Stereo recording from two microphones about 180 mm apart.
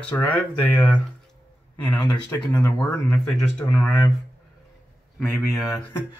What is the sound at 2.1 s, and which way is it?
Speech, 5° left (ahead or behind).